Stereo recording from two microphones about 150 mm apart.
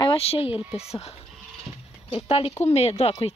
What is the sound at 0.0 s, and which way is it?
Speech, 40° left (ahead or behind).